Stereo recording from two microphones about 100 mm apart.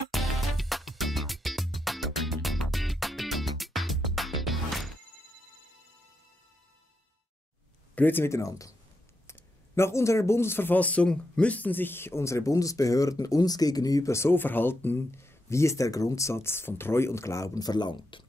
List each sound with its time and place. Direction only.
0.1 s music: centre (ahead or behind)
7.9 s speech: 20° left (ahead or behind); by 18.2 s 50° left (ahead or behind)